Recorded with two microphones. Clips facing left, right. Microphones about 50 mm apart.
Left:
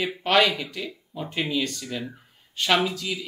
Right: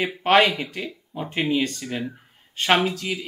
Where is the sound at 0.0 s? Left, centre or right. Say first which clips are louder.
Right 3 dB; right.